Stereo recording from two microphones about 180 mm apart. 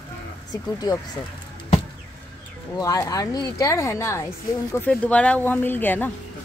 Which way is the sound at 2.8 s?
20° left (ahead or behind).